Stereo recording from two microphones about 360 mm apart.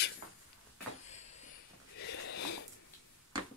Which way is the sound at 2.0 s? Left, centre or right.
Left.